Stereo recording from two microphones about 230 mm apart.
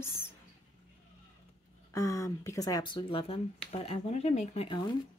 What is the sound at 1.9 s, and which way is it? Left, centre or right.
Speech, centre.